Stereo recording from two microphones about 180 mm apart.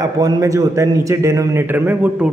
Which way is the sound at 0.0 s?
20° right (ahead or behind).